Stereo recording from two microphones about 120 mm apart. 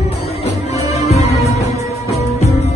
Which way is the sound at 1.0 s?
65° left (ahead or behind).